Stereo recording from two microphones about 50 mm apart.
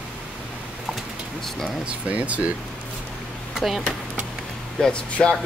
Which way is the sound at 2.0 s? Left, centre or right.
Right.